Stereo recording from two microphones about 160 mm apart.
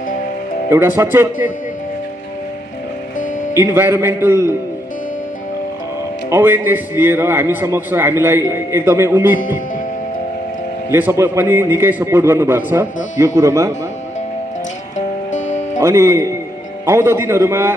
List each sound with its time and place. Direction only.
0.7 s a man's voice: 15° right (ahead or behind)
3.5 s a man's voice: 15° right (ahead or behind)
6.3 s a man's voice: 15° right (ahead or behind)
10.9 s a man's voice: 15° right (ahead or behind)
15.0 s music: 50° left (ahead or behind)
15.8 s a man's voice: 15° right (ahead or behind)